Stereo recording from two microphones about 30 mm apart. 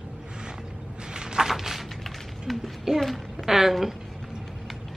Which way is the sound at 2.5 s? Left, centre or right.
Centre.